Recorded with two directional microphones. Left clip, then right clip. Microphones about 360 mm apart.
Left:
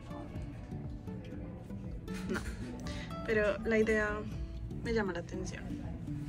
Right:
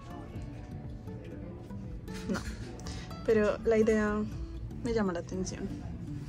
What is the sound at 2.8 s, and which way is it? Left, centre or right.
Speech, centre.